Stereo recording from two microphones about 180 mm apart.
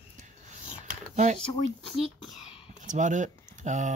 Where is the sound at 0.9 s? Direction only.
40° right (ahead or behind).